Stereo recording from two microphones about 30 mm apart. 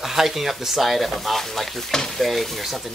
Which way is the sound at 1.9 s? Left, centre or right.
Centre.